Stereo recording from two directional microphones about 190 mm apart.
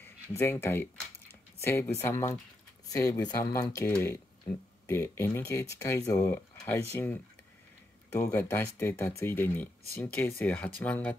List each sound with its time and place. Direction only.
0.0 s speech: 10° left (ahead or behind)